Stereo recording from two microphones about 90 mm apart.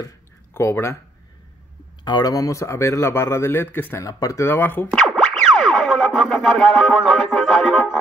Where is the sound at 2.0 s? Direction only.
50° left (ahead or behind); by 3.9 s 20° left (ahead or behind).